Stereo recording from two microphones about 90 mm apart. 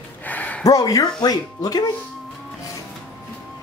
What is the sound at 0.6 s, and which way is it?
Speech, 40° left (ahead or behind).